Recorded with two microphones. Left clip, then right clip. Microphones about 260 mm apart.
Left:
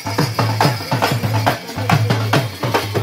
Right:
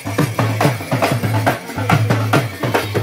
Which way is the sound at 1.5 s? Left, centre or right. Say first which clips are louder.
Even; left.